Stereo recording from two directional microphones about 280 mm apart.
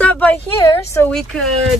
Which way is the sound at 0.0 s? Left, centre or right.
Centre.